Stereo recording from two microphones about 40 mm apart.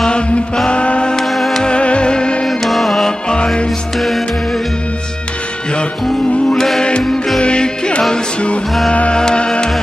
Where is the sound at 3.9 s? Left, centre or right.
Centre.